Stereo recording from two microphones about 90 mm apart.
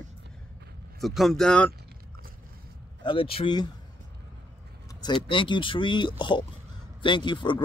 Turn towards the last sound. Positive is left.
turn(degrees=60)  # may be behind; listen again after turning